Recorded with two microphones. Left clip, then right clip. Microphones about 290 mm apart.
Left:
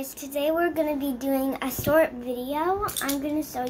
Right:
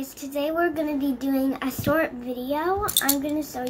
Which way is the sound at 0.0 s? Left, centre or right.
Centre.